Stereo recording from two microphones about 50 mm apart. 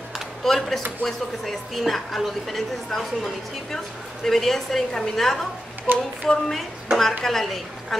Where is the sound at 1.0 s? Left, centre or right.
Centre.